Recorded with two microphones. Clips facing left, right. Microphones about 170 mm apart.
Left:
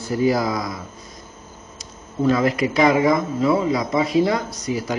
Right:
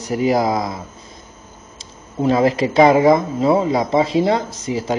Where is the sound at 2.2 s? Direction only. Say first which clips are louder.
Right 3 dB; 25° right (ahead or behind).